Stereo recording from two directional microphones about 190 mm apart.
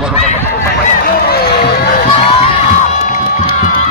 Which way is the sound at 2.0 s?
30° left (ahead or behind).